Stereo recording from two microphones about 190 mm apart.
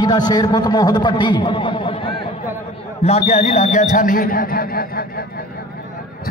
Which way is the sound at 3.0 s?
35° left (ahead or behind).